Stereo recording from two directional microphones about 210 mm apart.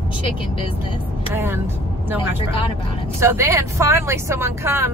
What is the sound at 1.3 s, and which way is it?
Speech, 10° right (ahead or behind).